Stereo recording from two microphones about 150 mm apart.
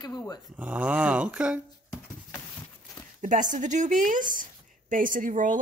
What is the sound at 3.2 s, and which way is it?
Speech, 60° right (ahead or behind).